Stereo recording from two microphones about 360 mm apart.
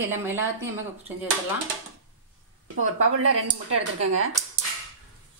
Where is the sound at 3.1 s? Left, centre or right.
Right.